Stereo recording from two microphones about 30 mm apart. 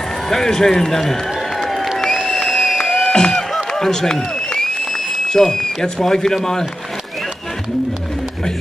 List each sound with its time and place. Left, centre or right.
0.3 s a man's voice: centre
2.2 s applause: centre
2.8 s music: left
3.5 s a sound: centre
5.3 s speech: left